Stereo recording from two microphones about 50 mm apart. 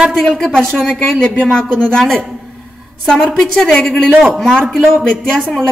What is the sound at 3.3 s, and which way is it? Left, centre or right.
Speech, centre.